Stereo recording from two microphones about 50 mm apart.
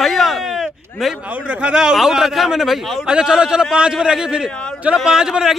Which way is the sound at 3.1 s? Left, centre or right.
Centre.